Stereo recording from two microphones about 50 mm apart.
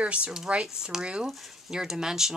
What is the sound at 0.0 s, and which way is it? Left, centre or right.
Speech, right.